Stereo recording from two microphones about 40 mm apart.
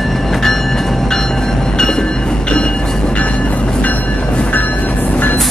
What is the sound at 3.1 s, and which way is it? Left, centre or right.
Train, left.